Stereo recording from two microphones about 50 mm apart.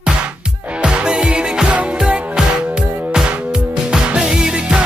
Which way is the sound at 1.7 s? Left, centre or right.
Right.